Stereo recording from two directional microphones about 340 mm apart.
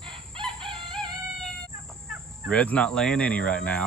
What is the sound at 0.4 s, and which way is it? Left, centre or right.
Chicken, centre.